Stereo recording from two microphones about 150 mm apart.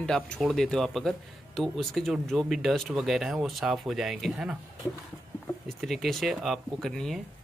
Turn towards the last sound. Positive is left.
turn(degrees=5)  # may be behind; listen again after turning